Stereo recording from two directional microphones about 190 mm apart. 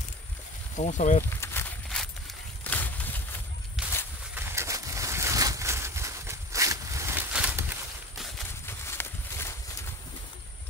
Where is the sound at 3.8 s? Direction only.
5° right (ahead or behind).